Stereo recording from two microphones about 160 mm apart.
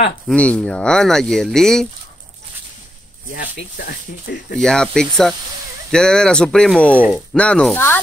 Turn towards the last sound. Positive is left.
turn(degrees=10)  # may be behind; listen again after turning